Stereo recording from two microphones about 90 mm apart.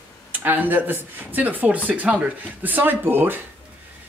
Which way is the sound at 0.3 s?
20° right (ahead or behind).